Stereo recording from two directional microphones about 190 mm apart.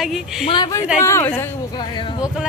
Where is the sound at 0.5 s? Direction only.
20° left (ahead or behind).